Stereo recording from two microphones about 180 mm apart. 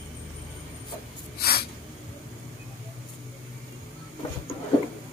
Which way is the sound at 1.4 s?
60° left (ahead or behind).